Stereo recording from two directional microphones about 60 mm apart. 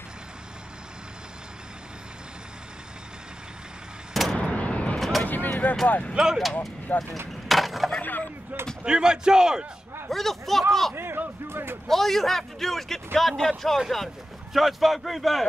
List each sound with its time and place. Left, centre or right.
4.1 s vehicle: centre
4.4 s a sound: left
4.9 s vehicle: centre
5.2 s a sound: left
5.9 s speech: left
6.1 s a man's voice: centre
6.9 s speech: left
7.4 s a sound: centre
8.0 s a sound: left
8.8 s a man's voice: centre
10.0 s a man's voice: centre
11.0 s speech: right
11.9 s a man's voice: centre